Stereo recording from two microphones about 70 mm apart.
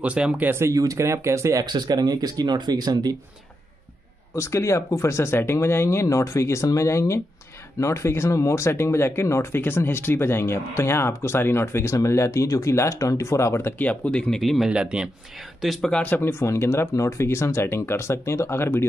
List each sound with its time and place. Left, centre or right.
0.0 s speech: centre
0.5 s speech: right
0.7 s speech: right
1.7 s speech: right
4.4 s speech: left
13.8 s speech: centre
14.4 s speech: centre
14.7 s speech: centre
15.6 s speech: centre
15.9 s speech: left